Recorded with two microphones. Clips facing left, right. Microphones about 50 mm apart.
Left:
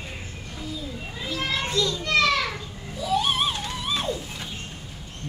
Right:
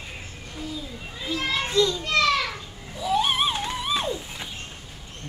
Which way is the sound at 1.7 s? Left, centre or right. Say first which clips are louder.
Right 6 dB; centre.